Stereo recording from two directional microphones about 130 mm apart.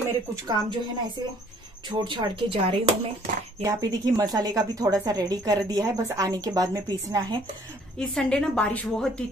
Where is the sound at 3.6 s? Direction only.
30° right (ahead or behind).